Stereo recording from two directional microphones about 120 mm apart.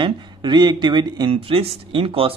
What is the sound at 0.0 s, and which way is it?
Speech, 40° right (ahead or behind).